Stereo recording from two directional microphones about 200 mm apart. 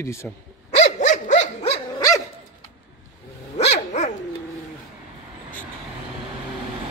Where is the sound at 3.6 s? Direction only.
30° left (ahead or behind).